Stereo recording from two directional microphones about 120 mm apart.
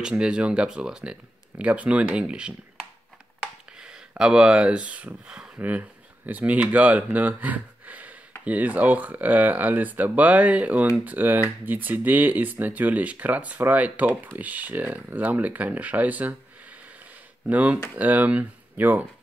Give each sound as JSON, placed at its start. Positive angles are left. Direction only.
{"t": 0.0, "sound": "speech", "side_deg": -5}
{"t": 3.8, "sound": "speech", "side_deg": -5}
{"t": 17.5, "sound": "speech", "side_deg": -10}